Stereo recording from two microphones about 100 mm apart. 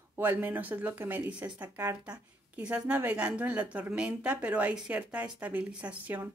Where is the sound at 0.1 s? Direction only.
20° right (ahead or behind).